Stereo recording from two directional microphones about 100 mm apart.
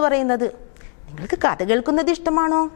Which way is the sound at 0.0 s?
15° left (ahead or behind).